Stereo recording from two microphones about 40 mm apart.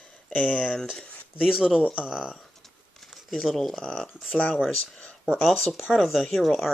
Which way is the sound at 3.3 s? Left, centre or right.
Centre.